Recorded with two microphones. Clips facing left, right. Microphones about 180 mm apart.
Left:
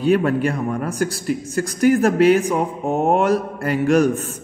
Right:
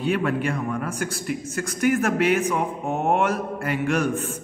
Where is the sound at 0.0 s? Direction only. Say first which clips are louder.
Left 6 dB; 40° left (ahead or behind).